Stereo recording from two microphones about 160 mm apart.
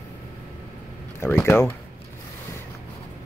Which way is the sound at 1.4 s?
10° left (ahead or behind).